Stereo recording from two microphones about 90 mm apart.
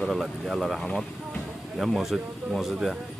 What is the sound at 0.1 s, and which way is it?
Speech, centre (ahead or behind).